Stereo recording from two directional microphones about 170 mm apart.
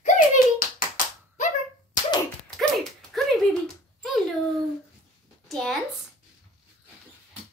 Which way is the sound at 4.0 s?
Centre (ahead or behind).